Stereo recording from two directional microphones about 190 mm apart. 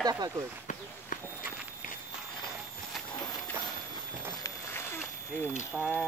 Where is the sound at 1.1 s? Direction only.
45° left (ahead or behind).